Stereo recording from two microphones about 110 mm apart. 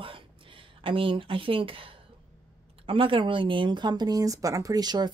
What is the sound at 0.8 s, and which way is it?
Speech, 50° right (ahead or behind).